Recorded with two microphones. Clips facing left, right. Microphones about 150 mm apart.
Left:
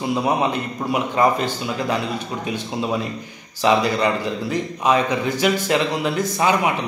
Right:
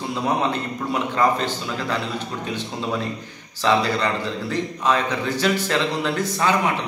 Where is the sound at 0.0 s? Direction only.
15° left (ahead or behind).